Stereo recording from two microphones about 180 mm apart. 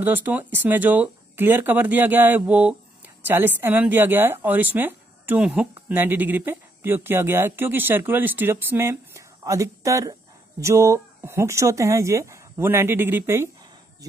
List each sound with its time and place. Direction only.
0.0 s a woman's voice: 10° right (ahead or behind)